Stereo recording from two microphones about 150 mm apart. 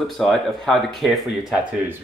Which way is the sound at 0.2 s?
Centre (ahead or behind).